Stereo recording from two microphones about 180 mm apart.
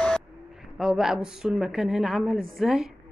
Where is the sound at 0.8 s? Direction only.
Centre (ahead or behind).